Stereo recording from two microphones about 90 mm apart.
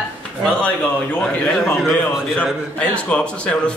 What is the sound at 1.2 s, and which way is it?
A man's voice, 10° left (ahead or behind).